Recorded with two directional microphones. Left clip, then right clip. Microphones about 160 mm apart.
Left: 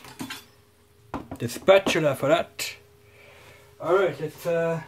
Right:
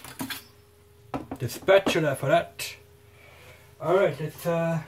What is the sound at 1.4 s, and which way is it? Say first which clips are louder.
Speech: left 2 dB; 40° left (ahead or behind).